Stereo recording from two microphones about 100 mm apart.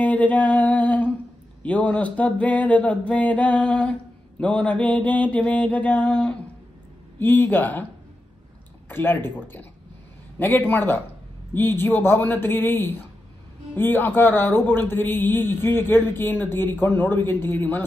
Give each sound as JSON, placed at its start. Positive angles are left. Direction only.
{"t": 0.0, "sound": "a sound", "side_deg": 15}
{"t": 1.6, "sound": "mantra", "side_deg": 15}
{"t": 7.2, "sound": "speech", "side_deg": 20}
{"t": 8.8, "sound": "speech", "side_deg": 20}
{"t": 10.4, "sound": "speech", "side_deg": 20}